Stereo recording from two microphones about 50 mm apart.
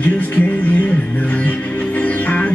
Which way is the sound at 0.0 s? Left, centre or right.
Left.